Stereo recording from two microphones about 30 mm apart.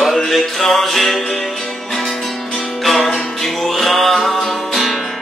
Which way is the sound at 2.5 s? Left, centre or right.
Centre.